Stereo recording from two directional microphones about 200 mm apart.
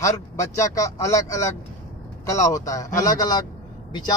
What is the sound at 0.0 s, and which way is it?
Speech, 15° left (ahead or behind).